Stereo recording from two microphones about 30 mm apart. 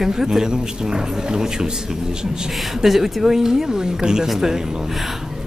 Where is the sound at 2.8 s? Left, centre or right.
Centre.